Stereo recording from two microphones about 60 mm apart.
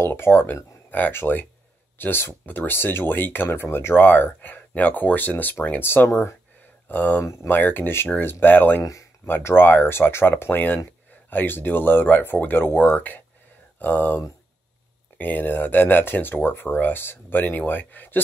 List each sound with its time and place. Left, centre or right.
0.0 s speech: left
6.9 s speech: left